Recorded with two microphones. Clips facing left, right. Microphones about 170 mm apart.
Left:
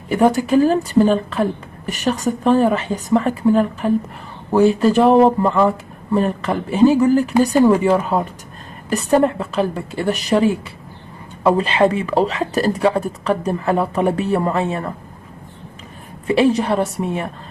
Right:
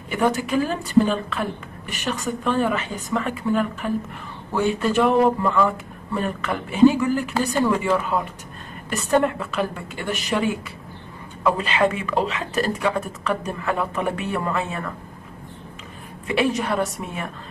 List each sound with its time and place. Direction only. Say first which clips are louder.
0.1 s a woman's voice: left 7 dB; 35° left (ahead or behind)
16.3 s a woman's voice: left 7 dB; 35° left (ahead or behind)